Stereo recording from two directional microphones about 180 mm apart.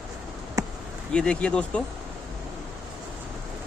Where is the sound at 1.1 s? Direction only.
5° left (ahead or behind).